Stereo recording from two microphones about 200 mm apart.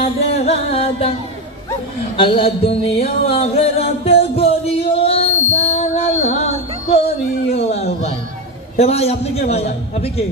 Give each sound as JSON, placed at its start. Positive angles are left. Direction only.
{"t": 0.0, "sound": "music", "side_deg": 30}
{"t": 2.1, "sound": "music", "side_deg": 25}
{"t": 7.4, "sound": "a sound", "side_deg": 30}
{"t": 8.7, "sound": "a man's voice", "side_deg": 30}